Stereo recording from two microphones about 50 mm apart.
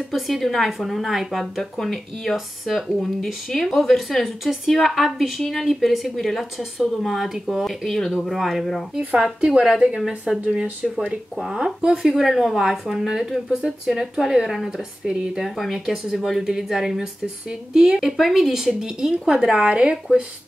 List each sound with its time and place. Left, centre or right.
0.1 s speech: centre
9.4 s speech: centre